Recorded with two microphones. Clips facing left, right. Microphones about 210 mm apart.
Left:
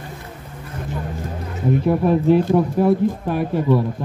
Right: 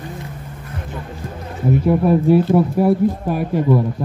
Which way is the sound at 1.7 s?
5° right (ahead or behind).